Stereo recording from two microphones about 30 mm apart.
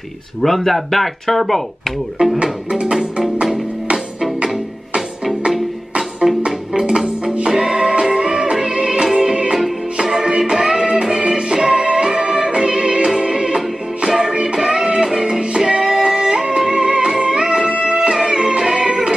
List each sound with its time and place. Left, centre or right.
0.4 s speech: centre
2.2 s speech: right
2.7 s music: right
6.2 s music: centre
7.4 s music: right
14.4 s music: right
15.4 s music: right
18.2 s music: right